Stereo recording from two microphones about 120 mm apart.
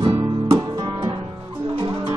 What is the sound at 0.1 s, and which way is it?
Music, 25° right (ahead or behind).